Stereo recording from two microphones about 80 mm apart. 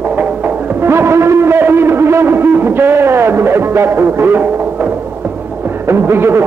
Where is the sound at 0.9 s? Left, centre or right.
Right.